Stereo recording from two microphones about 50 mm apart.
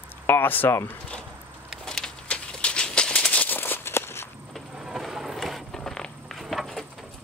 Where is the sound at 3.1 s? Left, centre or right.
Left.